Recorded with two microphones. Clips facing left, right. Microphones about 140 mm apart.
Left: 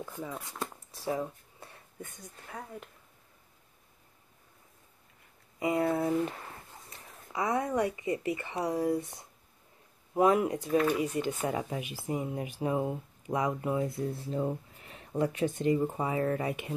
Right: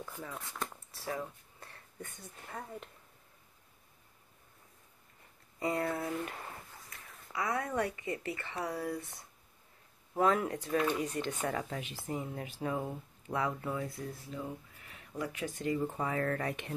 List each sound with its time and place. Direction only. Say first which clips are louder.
0.0 s speech: left 5 dB; 15° left (ahead or behind)
1.0 s a sound: left 6 dB; 15° left (ahead or behind)
2.5 s speech: left 1 dB; 5° left (ahead or behind)
5.6 s speech: left 5 dB; 15° left (ahead or behind)